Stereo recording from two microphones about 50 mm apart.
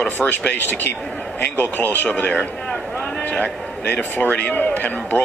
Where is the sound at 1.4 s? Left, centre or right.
Left.